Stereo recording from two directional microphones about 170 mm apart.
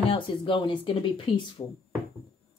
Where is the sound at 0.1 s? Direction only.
30° left (ahead or behind).